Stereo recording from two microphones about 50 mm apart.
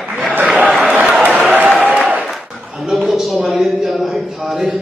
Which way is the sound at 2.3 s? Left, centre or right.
Centre.